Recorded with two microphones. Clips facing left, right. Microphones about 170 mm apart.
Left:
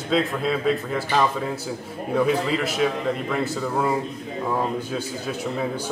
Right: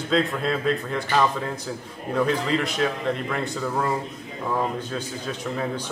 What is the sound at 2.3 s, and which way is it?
A man's voice, 5° left (ahead or behind).